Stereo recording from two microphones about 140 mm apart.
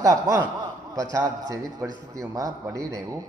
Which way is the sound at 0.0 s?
25° right (ahead or behind).